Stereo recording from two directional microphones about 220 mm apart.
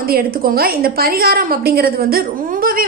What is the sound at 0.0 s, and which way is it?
A woman's voice, 40° right (ahead or behind).